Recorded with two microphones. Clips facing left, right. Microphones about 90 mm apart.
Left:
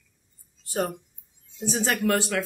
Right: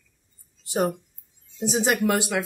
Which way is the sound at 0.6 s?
15° right (ahead or behind).